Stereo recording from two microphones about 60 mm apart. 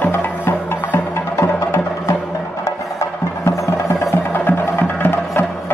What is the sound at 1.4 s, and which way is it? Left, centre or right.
Music, left.